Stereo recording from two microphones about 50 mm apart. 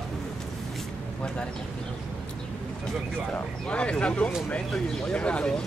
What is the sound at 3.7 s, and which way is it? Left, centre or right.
Speech, left.